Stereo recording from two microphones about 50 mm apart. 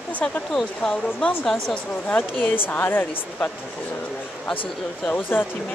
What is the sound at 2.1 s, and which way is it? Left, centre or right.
Speech, left.